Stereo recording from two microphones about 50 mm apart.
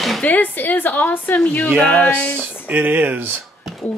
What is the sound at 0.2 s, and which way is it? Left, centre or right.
A woman's voice, left.